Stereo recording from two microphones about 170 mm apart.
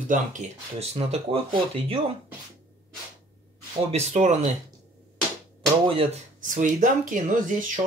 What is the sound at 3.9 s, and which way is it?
Speech, 40° right (ahead or behind).